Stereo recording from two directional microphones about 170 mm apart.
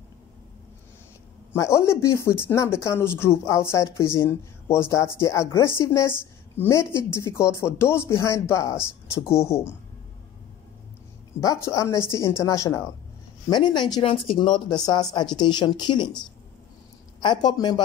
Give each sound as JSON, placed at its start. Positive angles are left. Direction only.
{"t": 1.5, "sound": "speech", "side_deg": 15}
{"t": 11.4, "sound": "speech", "side_deg": 20}